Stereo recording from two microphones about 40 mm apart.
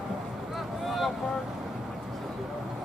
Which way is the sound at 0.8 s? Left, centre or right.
Centre.